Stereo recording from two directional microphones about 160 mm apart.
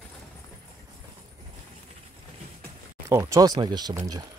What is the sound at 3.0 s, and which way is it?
Speech, 20° right (ahead or behind).